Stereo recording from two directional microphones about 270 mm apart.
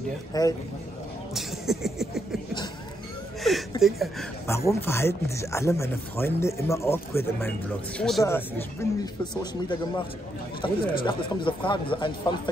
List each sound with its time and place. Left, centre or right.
0.3 s speech: centre
1.3 s a sound: centre
3.4 s speech: centre